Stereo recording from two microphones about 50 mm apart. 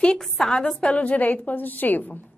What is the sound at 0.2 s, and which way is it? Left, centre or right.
Speech, centre.